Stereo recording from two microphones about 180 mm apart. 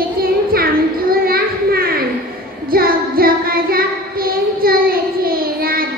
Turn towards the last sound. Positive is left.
turn(degrees=-55)  # may be behind; listen again after turning